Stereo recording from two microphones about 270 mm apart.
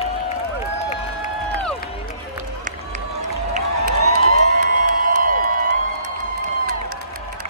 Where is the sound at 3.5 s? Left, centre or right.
Right.